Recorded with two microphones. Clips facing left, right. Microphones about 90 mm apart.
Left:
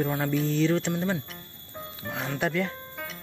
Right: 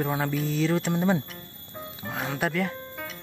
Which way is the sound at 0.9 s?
15° right (ahead or behind).